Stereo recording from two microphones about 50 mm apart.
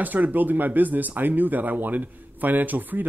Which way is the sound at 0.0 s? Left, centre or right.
Right.